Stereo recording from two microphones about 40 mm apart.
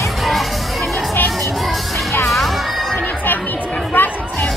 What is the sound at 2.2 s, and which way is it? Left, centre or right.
Music, centre.